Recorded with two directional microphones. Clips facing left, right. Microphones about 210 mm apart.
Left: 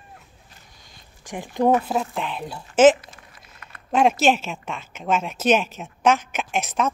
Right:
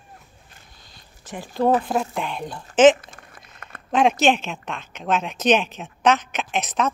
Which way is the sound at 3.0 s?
50° right (ahead or behind).